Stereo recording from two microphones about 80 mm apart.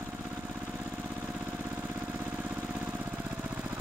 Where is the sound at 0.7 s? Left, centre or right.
Centre.